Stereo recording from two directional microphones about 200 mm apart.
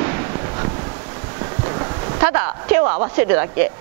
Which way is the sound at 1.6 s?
25° right (ahead or behind).